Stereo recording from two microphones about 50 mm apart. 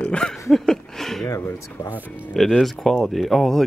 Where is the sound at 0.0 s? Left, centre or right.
Centre.